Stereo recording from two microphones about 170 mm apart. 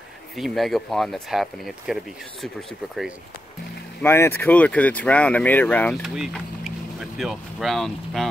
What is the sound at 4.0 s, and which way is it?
Speech, 15° left (ahead or behind).